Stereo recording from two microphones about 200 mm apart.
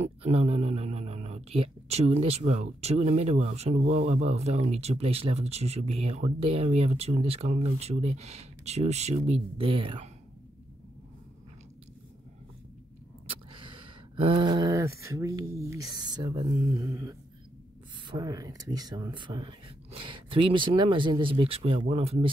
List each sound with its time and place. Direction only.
0.0 s speech: 30° right (ahead or behind)
13.3 s speech: 25° right (ahead or behind)